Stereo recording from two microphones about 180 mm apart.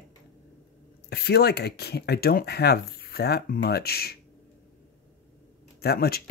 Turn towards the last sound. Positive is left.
turn(degrees=60)  # may be behind; listen again after turning